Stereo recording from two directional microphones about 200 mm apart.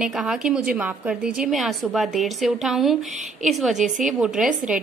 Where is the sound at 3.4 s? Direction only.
Centre (ahead or behind).